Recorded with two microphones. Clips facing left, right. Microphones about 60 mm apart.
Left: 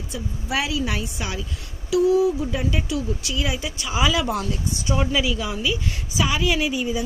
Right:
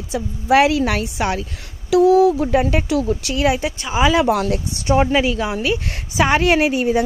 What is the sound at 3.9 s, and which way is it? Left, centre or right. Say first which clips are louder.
Speech: right 6 dB; right.